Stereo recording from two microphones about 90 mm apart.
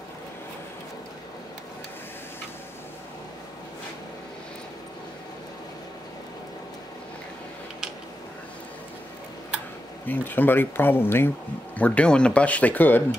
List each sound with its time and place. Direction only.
10.0 s speech: 20° left (ahead or behind)